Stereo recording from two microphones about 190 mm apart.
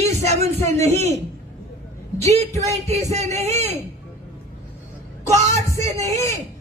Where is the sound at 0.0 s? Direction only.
35° right (ahead or behind).